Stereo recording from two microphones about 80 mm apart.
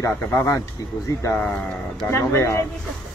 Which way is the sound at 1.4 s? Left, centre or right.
Left.